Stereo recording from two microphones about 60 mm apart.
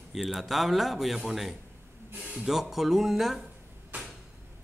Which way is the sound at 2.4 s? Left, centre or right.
Centre.